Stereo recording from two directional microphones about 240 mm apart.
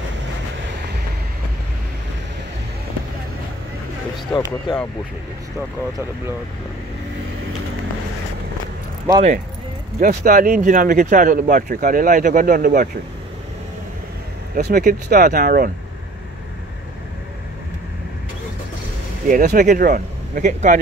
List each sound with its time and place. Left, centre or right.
4.3 s speech: centre
9.9 s speech: right
14.5 s speech: right
19.2 s speech: right